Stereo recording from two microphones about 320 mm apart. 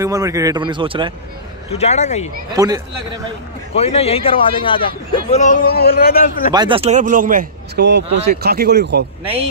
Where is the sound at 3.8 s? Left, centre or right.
Centre.